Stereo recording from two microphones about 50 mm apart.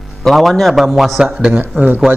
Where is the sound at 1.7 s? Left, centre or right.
Right.